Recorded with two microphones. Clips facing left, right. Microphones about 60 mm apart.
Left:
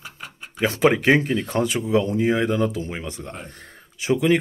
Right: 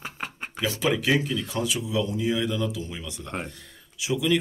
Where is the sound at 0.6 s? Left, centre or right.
Left.